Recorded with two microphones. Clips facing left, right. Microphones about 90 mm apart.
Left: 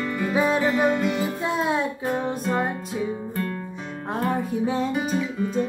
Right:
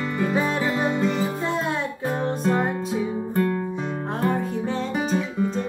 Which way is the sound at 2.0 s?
30° right (ahead or behind).